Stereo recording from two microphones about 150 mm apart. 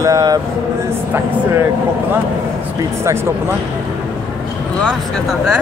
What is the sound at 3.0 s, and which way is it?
Speech, 15° right (ahead or behind).